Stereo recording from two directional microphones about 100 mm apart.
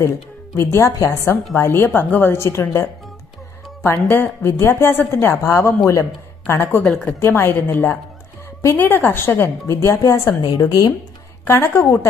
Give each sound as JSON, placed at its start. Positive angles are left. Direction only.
{"t": 0.6, "sound": "a woman's voice", "side_deg": 30}
{"t": 6.8, "sound": "speech", "side_deg": 0}
{"t": 7.2, "sound": "a woman's voice", "side_deg": 25}
{"t": 11.4, "sound": "a woman's voice", "side_deg": 25}